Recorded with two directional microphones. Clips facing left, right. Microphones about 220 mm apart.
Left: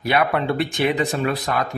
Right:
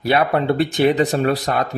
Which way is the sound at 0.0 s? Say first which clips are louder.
Right 3 dB; 35° right (ahead or behind).